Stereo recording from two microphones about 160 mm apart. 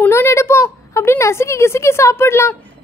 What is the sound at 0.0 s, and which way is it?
A woman's voice, 15° left (ahead or behind).